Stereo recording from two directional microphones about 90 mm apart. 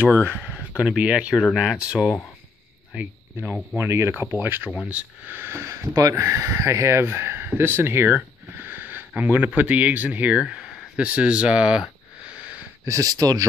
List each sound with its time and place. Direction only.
0.7 s speech: 10° right (ahead or behind)
2.9 s a sound: 15° right (ahead or behind)
3.7 s speech: 30° right (ahead or behind); by 11.9 s 10° right (ahead or behind)
12.8 s speech: 40° right (ahead or behind)